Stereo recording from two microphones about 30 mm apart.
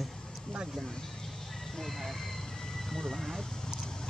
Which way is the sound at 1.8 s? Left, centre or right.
Centre.